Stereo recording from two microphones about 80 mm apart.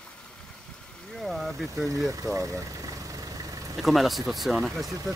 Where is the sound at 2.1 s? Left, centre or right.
Right.